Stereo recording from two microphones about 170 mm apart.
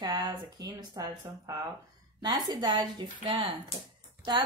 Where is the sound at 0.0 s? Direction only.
25° right (ahead or behind).